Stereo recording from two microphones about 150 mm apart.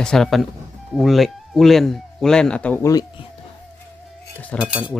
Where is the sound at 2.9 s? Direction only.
25° left (ahead or behind).